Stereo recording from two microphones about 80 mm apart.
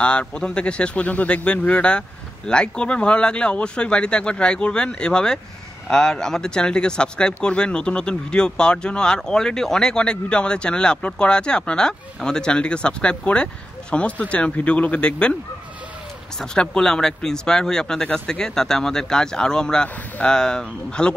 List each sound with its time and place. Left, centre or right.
0.0 s speech: centre
16.3 s speech: centre